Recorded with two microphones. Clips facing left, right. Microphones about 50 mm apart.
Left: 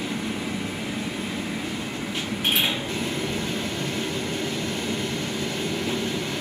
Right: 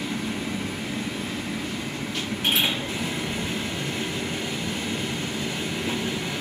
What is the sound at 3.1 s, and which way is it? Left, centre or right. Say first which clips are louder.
Train: left 1 dB; centre.